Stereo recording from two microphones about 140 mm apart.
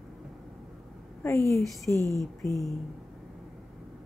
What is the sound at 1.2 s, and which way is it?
A woman's voice, 20° left (ahead or behind).